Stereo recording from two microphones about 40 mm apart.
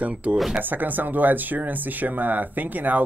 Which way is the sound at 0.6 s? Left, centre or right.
Right.